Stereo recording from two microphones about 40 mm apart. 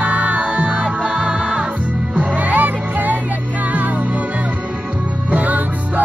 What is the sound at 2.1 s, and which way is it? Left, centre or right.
Music, right.